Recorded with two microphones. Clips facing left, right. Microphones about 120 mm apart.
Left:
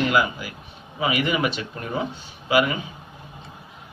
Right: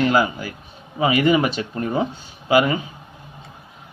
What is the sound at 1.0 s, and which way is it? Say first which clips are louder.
A man's voice: right 6 dB; 35° right (ahead or behind).